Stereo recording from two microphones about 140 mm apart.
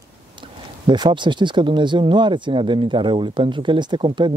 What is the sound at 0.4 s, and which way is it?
Speech, 35° right (ahead or behind).